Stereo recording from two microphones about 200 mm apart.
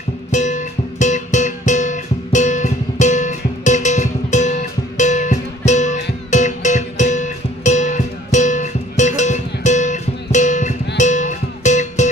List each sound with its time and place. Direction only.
0.3 s music: 35° left (ahead or behind)